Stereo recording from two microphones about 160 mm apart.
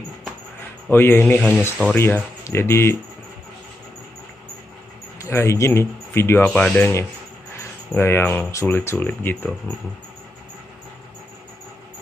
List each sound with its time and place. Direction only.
0.8 s speech: 15° left (ahead or behind)
5.2 s speech: 15° left (ahead or behind)
7.9 s speech: 15° left (ahead or behind)